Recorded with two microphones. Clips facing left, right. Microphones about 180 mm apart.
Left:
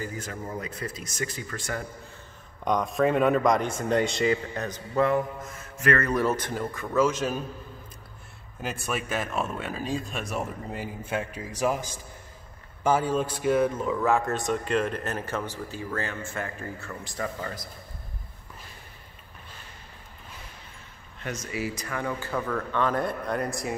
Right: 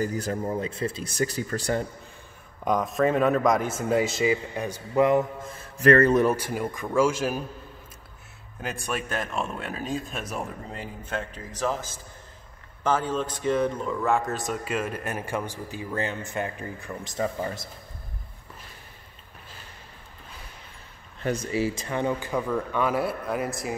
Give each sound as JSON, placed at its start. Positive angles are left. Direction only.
{"t": 0.0, "sound": "speech", "side_deg": -35}
{"t": 2.6, "sound": "speech", "side_deg": -5}
{"t": 5.4, "sound": "mantra", "side_deg": -30}
{"t": 6.1, "sound": "speech", "side_deg": -10}
{"t": 8.5, "sound": "speech", "side_deg": 0}
{"t": 21.5, "sound": "speech", "side_deg": -30}